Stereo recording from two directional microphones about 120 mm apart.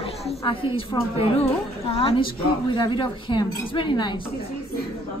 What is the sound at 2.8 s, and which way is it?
A woman's voice, 45° left (ahead or behind).